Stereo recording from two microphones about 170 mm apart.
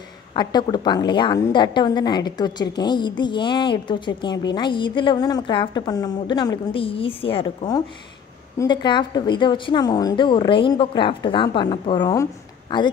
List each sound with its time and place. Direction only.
0.3 s a woman's voice: 25° left (ahead or behind)